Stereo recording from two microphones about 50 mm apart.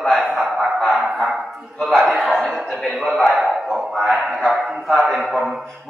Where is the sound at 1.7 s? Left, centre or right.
Centre.